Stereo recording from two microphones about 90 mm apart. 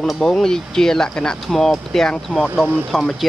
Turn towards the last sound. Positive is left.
turn(degrees=5)  # may be behind; listen again after turning